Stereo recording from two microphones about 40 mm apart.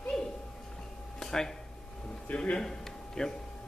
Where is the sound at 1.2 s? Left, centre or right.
Centre.